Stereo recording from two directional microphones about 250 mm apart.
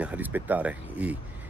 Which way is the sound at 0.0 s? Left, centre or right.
Centre.